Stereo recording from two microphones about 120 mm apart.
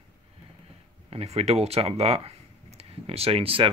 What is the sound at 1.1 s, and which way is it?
Speech, 60° right (ahead or behind).